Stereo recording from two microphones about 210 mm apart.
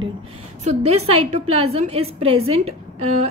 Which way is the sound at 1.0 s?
30° right (ahead or behind).